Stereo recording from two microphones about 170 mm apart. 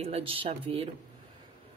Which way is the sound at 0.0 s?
35° right (ahead or behind).